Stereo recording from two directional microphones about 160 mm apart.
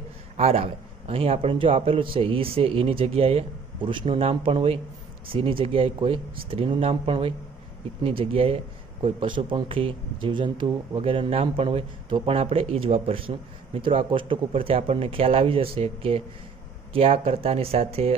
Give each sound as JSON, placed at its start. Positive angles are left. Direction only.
{"t": 0.4, "sound": "a man's voice", "side_deg": -40}